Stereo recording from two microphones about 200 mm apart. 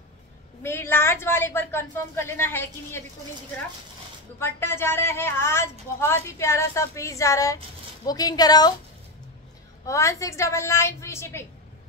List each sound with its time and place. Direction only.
0.6 s speech: 10° left (ahead or behind)
4.4 s a woman's voice: 10° left (ahead or behind)
9.8 s speech: 15° left (ahead or behind)